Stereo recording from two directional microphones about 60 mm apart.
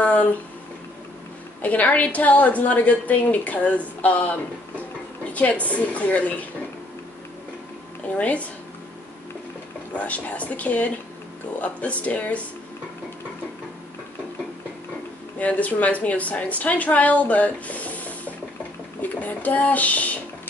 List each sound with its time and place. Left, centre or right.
0.0 s a sound: left
1.6 s a woman's voice: left
8.2 s a woman's voice: left
9.9 s a woman's voice: left
15.3 s a woman's voice: left